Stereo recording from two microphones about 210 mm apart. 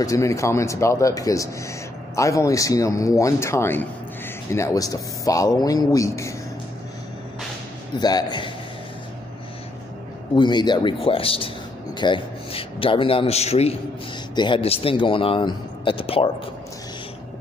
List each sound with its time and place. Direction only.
0.0 s speech: 15° left (ahead or behind)
8.0 s speech: 20° left (ahead or behind)
10.3 s speech: 20° left (ahead or behind)